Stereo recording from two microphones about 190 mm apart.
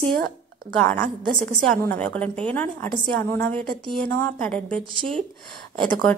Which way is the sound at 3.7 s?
25° right (ahead or behind).